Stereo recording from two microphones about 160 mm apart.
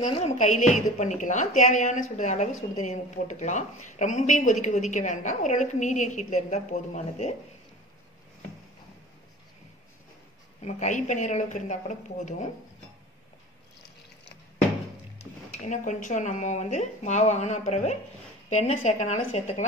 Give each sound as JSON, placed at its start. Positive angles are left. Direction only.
{"t": 0.2, "sound": "a woman's voice", "side_deg": 45}
{"t": 10.6, "sound": "a woman's voice", "side_deg": 50}
{"t": 15.6, "sound": "a woman's voice", "side_deg": 50}